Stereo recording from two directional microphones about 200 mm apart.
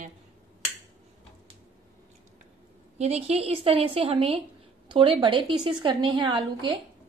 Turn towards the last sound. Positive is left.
turn(degrees=-25)  # may be behind; listen again after turning